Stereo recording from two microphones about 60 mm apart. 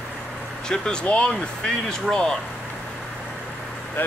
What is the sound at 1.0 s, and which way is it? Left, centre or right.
Speech, centre.